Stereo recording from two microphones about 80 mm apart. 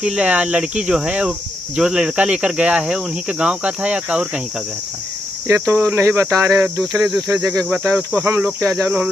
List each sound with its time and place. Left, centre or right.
0.0 s speech: centre
5.5 s speech: right
7.0 s cricket: centre
7.2 s cricket: right
8.5 s speech: right